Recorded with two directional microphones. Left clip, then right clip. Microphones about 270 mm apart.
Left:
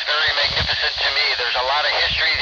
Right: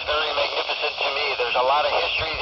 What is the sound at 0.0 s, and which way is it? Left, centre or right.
Radio, left.